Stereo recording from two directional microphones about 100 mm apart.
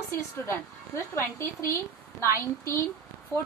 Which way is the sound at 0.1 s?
25° left (ahead or behind).